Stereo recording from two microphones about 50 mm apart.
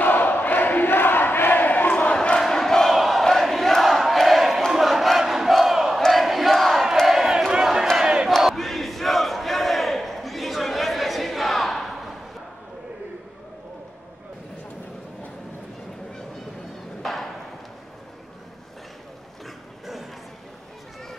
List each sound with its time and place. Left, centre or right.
0.0 s crowd: left
2.1 s crowd: centre
2.4 s battle cry: centre
5.9 s crowd: centre
8.4 s crowd: centre
17.0 s thump: centre
19.4 s a sound: centre